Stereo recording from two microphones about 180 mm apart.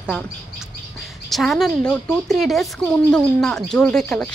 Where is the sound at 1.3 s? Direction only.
Centre (ahead or behind).